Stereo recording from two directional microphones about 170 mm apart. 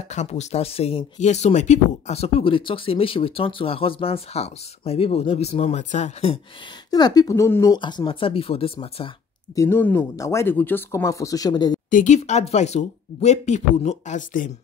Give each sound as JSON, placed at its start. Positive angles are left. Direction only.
{"t": 0.1, "sound": "speech", "side_deg": 40}
{"t": 6.9, "sound": "speech", "side_deg": 20}
{"t": 9.6, "sound": "speech", "side_deg": 15}
{"t": 11.9, "sound": "speech", "side_deg": 45}